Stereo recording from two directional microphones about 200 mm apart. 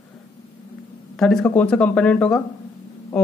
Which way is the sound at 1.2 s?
Centre (ahead or behind).